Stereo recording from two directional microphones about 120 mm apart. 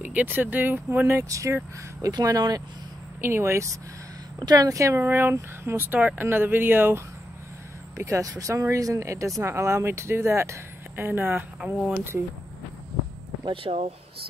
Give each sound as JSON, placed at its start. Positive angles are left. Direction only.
{"t": 0.0, "sound": "speech", "side_deg": -15}
{"t": 3.2, "sound": "speech", "side_deg": -20}
{"t": 4.4, "sound": "speech", "side_deg": -35}
{"t": 8.0, "sound": "speech", "side_deg": -25}
{"t": 13.4, "sound": "speech", "side_deg": -45}